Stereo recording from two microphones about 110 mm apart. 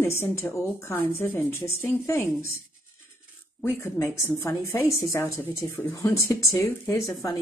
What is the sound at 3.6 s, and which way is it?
Speech, 25° left (ahead or behind).